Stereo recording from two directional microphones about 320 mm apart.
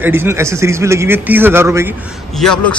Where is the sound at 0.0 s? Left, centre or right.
Centre.